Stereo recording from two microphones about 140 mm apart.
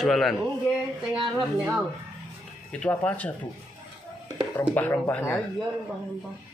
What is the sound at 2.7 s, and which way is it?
Speech, 10° left (ahead or behind).